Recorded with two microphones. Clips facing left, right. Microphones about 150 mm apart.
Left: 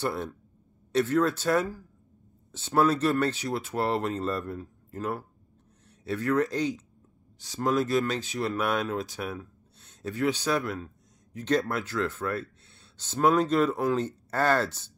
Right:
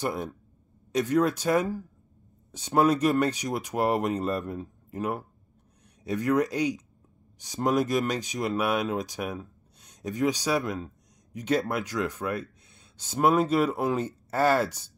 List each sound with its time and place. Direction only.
0.0 s speech: 15° right (ahead or behind)